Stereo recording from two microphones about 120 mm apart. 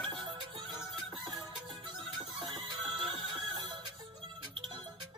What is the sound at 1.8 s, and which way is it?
Music, 45° right (ahead or behind).